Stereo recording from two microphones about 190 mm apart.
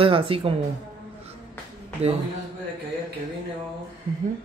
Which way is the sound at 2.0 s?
35° right (ahead or behind).